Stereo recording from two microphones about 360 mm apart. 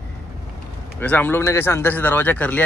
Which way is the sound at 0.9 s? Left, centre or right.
Centre.